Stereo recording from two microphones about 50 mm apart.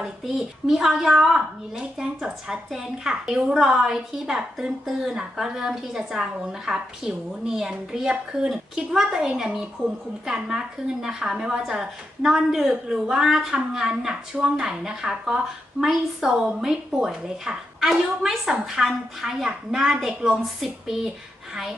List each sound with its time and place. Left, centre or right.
0.7 s a woman's voice: centre
9.8 s a woman's voice: right
10.2 s a woman's voice: centre